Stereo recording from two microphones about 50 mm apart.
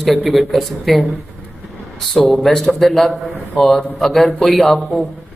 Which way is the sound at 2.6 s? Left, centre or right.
Centre.